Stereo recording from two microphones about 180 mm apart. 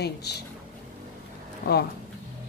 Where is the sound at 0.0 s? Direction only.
65° left (ahead or behind).